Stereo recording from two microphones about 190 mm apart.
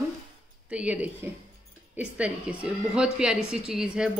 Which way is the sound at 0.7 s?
5° right (ahead or behind).